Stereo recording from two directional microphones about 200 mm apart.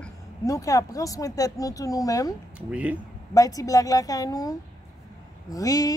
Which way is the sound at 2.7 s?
5° right (ahead or behind).